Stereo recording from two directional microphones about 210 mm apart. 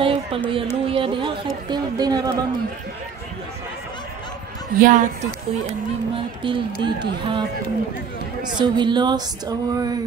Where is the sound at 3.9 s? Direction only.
20° left (ahead or behind).